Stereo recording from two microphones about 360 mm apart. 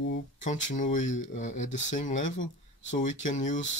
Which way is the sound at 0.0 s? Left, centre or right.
Left.